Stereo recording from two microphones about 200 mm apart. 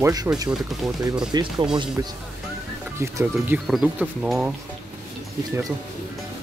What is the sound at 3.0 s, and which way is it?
Speech, 15° right (ahead or behind).